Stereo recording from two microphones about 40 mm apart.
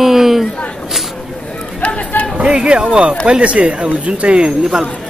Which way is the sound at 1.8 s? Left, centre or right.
Left.